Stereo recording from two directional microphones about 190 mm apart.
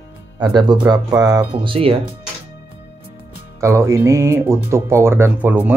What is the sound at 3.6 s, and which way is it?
Speech, 15° right (ahead or behind).